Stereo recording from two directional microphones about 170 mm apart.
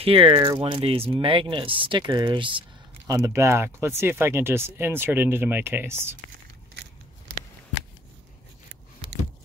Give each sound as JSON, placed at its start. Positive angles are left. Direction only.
{"t": 0.0, "sound": "speech", "side_deg": -35}
{"t": 3.1, "sound": "speech", "side_deg": -20}
{"t": 9.0, "sound": "keys jangling", "side_deg": -30}